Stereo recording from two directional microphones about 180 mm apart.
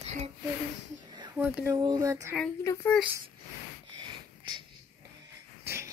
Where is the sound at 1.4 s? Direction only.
10° right (ahead or behind).